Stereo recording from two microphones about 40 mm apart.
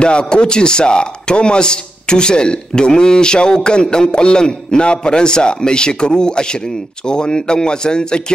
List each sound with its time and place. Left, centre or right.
0.0 s a man's voice: left